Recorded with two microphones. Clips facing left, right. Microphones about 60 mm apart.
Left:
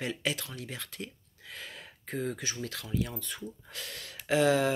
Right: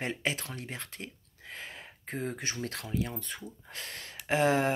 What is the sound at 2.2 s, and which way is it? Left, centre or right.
Speech, right.